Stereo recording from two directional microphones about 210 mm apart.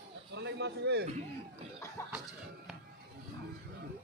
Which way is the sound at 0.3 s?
55° right (ahead or behind).